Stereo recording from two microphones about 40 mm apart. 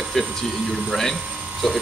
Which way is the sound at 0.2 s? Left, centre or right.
Centre.